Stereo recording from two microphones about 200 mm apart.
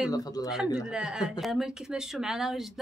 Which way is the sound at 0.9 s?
5° right (ahead or behind).